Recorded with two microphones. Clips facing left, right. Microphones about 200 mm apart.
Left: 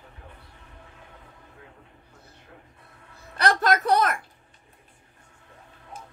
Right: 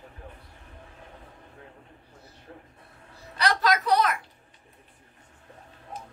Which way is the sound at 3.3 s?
50° left (ahead or behind).